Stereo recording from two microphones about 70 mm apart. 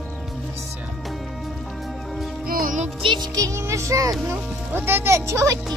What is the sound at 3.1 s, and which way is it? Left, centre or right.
Music, right.